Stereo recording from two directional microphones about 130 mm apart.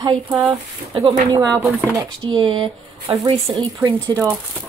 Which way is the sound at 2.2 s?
40° right (ahead or behind).